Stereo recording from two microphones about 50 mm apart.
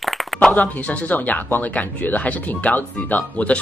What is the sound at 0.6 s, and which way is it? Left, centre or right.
Speech, left.